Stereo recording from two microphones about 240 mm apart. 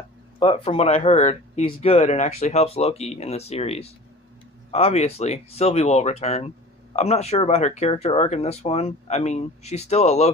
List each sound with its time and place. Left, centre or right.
0.4 s speech: left